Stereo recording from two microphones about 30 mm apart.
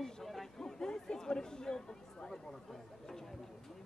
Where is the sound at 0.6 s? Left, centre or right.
Left.